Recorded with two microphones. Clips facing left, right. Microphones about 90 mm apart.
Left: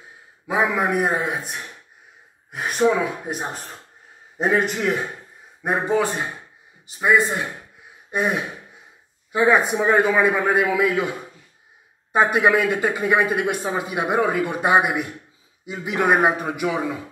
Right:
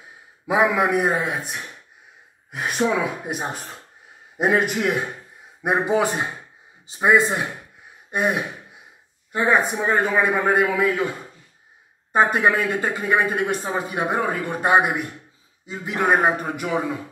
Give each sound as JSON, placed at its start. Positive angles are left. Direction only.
{"t": 0.5, "sound": "a man's voice", "side_deg": -5}
{"t": 8.1, "sound": "a man's voice", "side_deg": 0}
{"t": 12.1, "sound": "a man's voice", "side_deg": 5}